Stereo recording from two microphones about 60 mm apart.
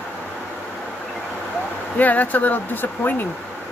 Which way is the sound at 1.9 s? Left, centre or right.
Left.